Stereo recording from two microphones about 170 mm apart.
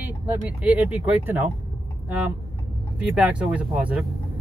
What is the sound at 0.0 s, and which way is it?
Speech, 10° right (ahead or behind).